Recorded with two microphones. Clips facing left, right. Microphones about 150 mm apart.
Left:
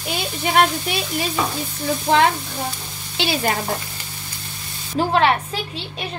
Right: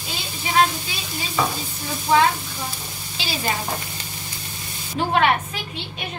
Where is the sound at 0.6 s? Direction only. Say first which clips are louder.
Left 2 dB; 65° left (ahead or behind).